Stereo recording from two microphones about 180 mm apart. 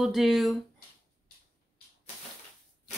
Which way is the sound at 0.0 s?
Centre (ahead or behind).